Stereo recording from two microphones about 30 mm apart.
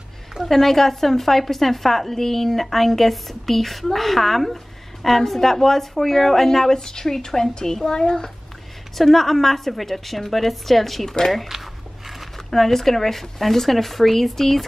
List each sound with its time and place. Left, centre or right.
0.4 s a woman's voice: centre
8.9 s a woman's voice: centre
11.4 s a sound: centre
12.4 s a woman's voice: centre